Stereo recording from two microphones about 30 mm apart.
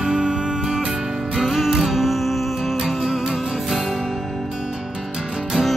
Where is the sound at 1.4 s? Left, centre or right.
Centre.